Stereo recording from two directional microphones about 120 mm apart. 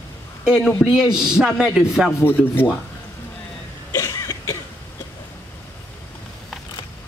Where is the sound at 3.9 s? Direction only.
30° left (ahead or behind).